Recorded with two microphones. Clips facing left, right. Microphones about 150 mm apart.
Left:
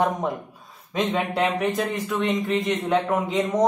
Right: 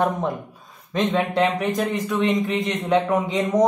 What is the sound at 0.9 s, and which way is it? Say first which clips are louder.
A man's voice: right 3 dB; 5° left (ahead or behind).